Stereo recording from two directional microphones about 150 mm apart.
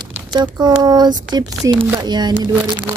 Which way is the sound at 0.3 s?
25° right (ahead or behind).